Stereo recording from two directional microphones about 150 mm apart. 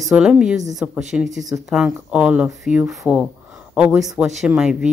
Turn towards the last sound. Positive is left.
turn(degrees=-5)  # may be behind; listen again after turning